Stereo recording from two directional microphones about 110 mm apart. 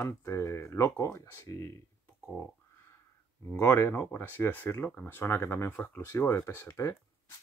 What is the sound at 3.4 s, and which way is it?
Speech, 20° left (ahead or behind).